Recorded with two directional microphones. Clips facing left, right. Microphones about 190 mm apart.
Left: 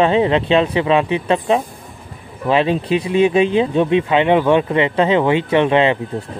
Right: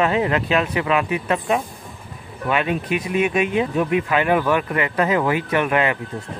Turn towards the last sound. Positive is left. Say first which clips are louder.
# left 6 dB
turn(degrees=25)  # may be behind; listen again after turning